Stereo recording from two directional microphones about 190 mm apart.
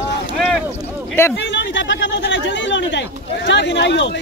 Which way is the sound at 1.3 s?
70° left (ahead or behind).